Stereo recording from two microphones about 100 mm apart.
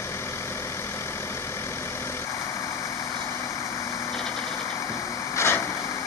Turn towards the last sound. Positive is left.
turn(degrees=25)  # may be behind; listen again after turning